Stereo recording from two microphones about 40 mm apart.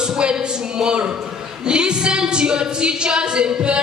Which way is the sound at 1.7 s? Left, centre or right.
Right.